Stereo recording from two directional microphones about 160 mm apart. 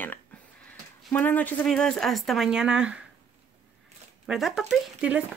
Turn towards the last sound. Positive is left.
turn(degrees=-5)  # may be behind; listen again after turning